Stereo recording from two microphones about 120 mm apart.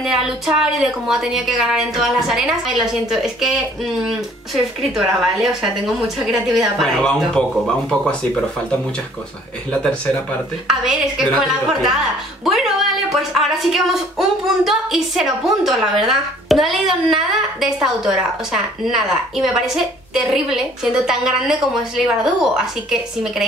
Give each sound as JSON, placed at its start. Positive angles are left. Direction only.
{"t": 0.0, "sound": "speech", "side_deg": -5}
{"t": 10.7, "sound": "speech", "side_deg": -5}